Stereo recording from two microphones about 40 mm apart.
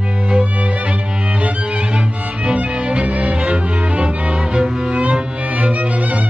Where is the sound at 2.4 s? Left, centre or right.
Right.